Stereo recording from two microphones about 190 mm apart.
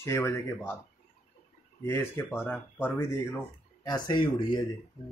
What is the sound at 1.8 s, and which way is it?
Speech, 10° left (ahead or behind).